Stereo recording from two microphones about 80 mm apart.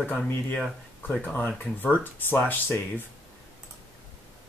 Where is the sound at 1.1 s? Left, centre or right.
Centre.